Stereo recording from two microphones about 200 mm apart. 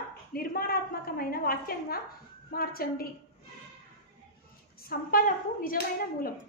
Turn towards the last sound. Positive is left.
turn(degrees=45)  # may be behind; listen again after turning